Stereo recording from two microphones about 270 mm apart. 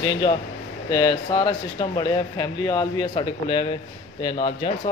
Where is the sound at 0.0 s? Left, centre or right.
Centre.